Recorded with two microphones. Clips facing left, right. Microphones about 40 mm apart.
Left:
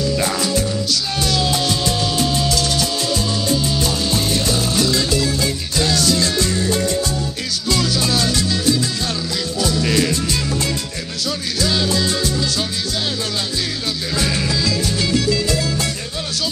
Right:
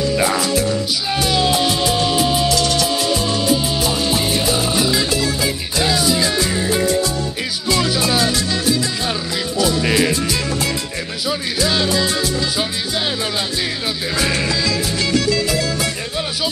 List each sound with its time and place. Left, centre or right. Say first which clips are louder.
0.1 s music: right 2 dB; centre
11.2 s music: right 2 dB; centre
14.1 s music: right 1 dB; centre